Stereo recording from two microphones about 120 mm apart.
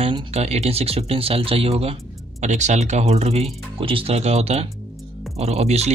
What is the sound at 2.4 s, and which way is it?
Speech, 75° right (ahead or behind).